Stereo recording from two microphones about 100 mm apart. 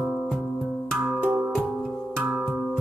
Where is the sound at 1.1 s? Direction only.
15° right (ahead or behind).